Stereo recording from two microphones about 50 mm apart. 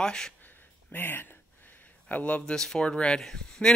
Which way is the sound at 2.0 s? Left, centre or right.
Left.